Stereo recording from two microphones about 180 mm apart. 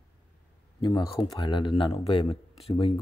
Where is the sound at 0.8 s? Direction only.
25° left (ahead or behind).